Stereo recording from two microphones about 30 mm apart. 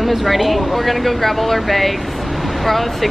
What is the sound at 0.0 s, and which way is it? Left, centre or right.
A woman's voice, centre.